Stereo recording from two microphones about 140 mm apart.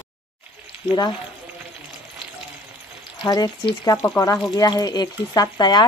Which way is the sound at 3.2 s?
30° left (ahead or behind).